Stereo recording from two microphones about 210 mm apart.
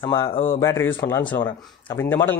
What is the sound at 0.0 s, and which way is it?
Speech, 15° left (ahead or behind).